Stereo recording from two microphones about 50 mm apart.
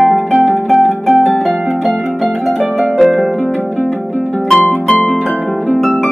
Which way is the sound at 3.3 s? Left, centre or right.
Centre.